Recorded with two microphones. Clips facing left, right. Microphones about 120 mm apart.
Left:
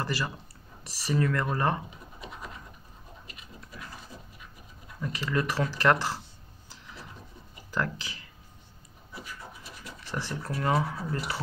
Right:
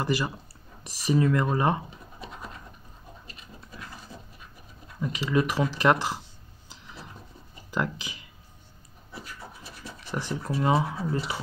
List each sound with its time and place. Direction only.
0.0 s speech: 15° right (ahead or behind)
5.0 s speech: 15° right (ahead or behind)
7.7 s speech: 15° right (ahead or behind)
9.8 s a sound: 15° right (ahead or behind)
10.5 s speech: 20° right (ahead or behind)